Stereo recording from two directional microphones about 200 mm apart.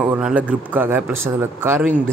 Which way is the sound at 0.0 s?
5° right (ahead or behind).